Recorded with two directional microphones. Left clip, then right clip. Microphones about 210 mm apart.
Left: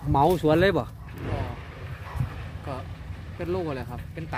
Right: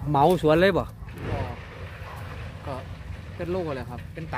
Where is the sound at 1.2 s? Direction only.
50° right (ahead or behind).